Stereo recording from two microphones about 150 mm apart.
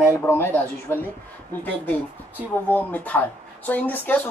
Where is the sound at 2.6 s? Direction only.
10° left (ahead or behind).